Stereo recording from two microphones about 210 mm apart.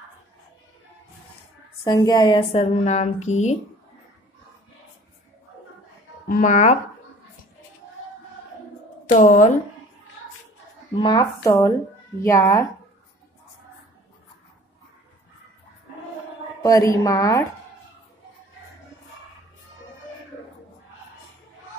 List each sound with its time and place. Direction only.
1.9 s speech: 20° left (ahead or behind); by 3.5 s 35° left (ahead or behind)
6.2 s speech: 40° left (ahead or behind)
9.0 s speech: 35° left (ahead or behind)
11.0 s a woman's voice: 20° left (ahead or behind)
16.6 s a woman's voice: 15° left (ahead or behind)